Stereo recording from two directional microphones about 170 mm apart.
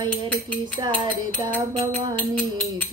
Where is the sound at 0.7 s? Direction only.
30° right (ahead or behind).